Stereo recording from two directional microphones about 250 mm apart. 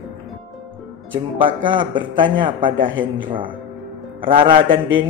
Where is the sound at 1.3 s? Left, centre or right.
Centre.